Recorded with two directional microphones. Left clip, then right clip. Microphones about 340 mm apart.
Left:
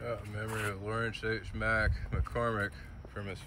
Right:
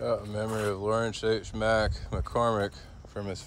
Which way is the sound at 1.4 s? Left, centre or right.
Centre.